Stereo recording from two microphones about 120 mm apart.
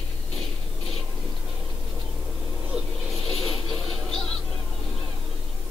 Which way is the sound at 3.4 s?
Centre (ahead or behind).